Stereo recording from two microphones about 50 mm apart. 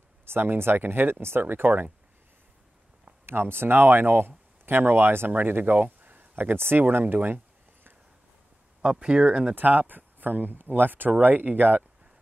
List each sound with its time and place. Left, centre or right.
0.2 s speech: right
3.3 s speech: right
8.8 s speech: centre
9.6 s speech: right